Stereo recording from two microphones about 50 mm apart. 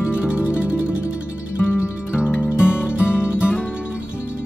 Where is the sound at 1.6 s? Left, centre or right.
Left.